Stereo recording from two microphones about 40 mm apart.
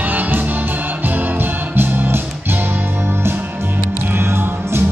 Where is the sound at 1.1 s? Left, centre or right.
Right.